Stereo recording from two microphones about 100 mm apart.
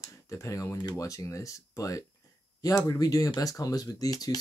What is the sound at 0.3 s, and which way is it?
Speech, 35° left (ahead or behind).